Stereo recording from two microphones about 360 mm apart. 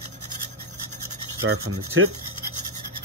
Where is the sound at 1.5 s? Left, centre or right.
Right.